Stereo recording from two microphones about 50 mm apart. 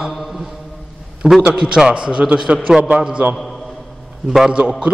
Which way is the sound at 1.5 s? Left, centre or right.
Centre.